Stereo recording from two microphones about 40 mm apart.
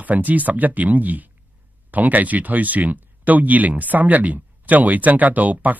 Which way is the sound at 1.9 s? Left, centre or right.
Right.